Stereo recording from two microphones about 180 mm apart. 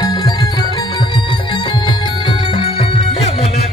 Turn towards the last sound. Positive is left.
turn(degrees=30)  # may be behind; listen again after turning